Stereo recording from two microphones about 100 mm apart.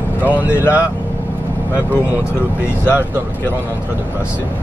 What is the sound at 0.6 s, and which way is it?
Speech, 25° left (ahead or behind).